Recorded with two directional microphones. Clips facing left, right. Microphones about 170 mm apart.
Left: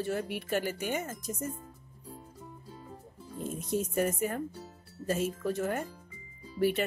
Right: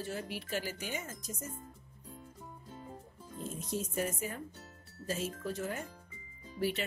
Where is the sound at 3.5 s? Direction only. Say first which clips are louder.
Left 6 dB; 60° left (ahead or behind).